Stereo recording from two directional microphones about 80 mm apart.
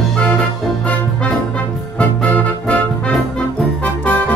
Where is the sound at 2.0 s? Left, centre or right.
Centre.